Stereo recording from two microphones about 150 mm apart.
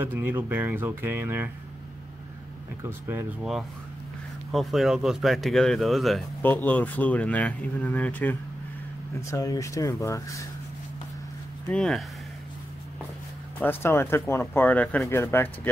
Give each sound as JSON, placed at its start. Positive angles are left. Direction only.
{"t": 0.0, "sound": "speech", "side_deg": -15}
{"t": 2.8, "sound": "speech", "side_deg": -15}
{"t": 4.5, "sound": "speech", "side_deg": 0}
{"t": 6.4, "sound": "speech", "side_deg": 10}
{"t": 11.7, "sound": "speech", "side_deg": 5}
{"t": 13.6, "sound": "speech", "side_deg": 15}